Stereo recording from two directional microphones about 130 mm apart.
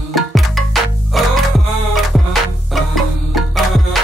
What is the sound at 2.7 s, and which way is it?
Music, centre (ahead or behind).